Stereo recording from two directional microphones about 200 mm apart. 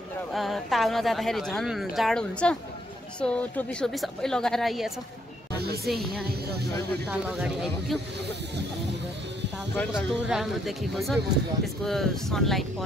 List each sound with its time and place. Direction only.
0.3 s a woman's voice: centre (ahead or behind)
5.5 s music: 55° right (ahead or behind)
5.9 s a woman's voice: centre (ahead or behind)
9.8 s a woman's voice: centre (ahead or behind)